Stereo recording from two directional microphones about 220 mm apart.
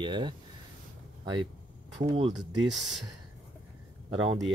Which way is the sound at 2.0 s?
30° right (ahead or behind).